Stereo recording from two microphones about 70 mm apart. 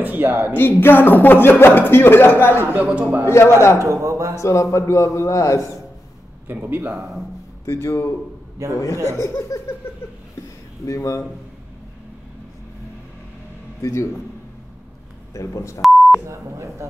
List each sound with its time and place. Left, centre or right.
0.0 s speech: right
0.5 s speech: left
2.7 s a man's voice: right
3.3 s speech: left
3.8 s a man's voice: right
4.4 s speech: left
6.4 s speech: right
6.9 s speech: centre
7.6 s speech: left
9.0 s speech: left
10.9 s speech: left
13.7 s speech: left
15.3 s speech: left
16.3 s a man's voice: right